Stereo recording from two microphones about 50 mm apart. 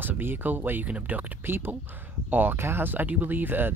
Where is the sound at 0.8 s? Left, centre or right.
Right.